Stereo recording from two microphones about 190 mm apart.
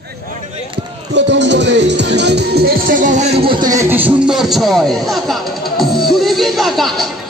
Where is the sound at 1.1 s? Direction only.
65° right (ahead or behind); by 3.3 s 40° right (ahead or behind).